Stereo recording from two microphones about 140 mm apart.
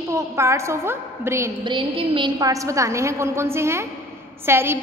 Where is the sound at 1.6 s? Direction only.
35° right (ahead or behind).